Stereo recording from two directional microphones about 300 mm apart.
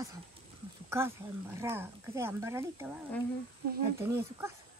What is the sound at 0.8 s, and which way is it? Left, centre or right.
Speech, centre.